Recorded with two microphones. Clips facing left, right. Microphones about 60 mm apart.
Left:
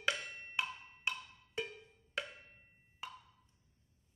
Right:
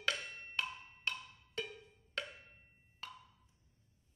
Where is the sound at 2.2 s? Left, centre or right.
Centre.